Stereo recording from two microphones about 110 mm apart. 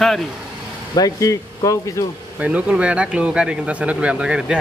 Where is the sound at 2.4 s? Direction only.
10° right (ahead or behind).